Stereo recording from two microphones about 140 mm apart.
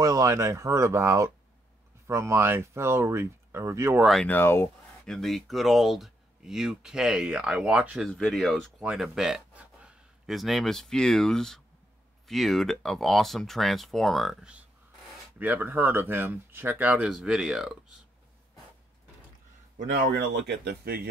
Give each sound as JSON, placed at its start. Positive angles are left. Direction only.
{"t": 0.0, "sound": "speech", "side_deg": -25}
{"t": 4.0, "sound": "speech", "side_deg": 0}
{"t": 4.3, "sound": "speech", "side_deg": 15}
{"t": 5.0, "sound": "speech", "side_deg": 5}
{"t": 8.0, "sound": "speech", "side_deg": 5}